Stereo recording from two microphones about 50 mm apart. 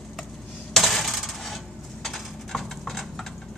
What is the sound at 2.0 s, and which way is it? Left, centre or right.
Clip-clop, centre.